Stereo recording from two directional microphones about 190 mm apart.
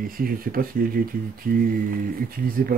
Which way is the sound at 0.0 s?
50° right (ahead or behind).